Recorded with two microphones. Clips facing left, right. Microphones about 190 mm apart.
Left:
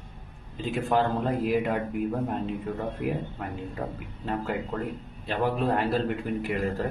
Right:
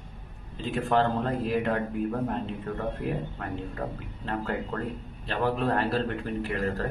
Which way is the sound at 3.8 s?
5° left (ahead or behind).